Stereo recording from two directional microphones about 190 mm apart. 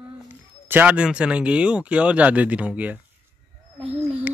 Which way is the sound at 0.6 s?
10° right (ahead or behind).